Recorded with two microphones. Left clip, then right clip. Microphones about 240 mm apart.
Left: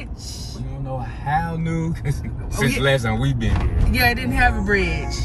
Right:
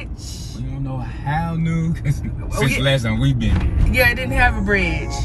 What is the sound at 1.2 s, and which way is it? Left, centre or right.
Music, left.